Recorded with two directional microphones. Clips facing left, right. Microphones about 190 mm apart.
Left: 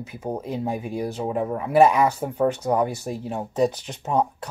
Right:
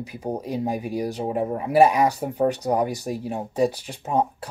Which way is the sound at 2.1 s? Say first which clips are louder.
Even; 35° right (ahead or behind).